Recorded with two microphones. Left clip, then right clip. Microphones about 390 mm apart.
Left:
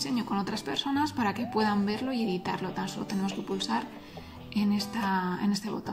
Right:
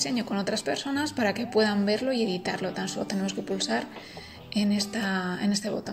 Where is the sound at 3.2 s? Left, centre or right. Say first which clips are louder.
Right 3 dB; left.